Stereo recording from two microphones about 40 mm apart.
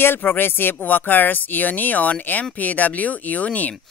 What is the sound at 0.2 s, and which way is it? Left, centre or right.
Speech, left.